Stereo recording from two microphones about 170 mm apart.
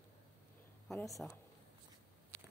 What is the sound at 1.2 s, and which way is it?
Speech, centre (ahead or behind).